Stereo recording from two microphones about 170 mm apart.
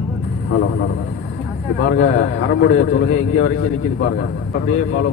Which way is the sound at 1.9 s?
90° left.